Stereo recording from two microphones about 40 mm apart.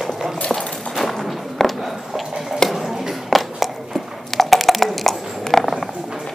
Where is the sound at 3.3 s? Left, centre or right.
Centre.